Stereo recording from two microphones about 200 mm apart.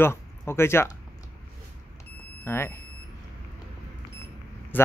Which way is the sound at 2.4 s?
10° left (ahead or behind).